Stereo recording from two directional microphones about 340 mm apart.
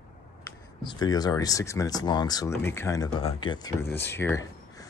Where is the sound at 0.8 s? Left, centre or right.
Centre.